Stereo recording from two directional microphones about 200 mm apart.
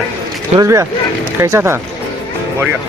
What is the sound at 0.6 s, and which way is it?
Speech, 15° right (ahead or behind).